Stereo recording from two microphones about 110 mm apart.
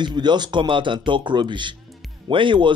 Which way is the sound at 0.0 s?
45° right (ahead or behind).